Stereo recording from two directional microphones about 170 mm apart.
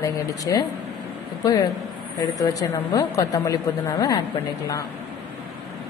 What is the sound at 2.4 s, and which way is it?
Speech, 20° left (ahead or behind).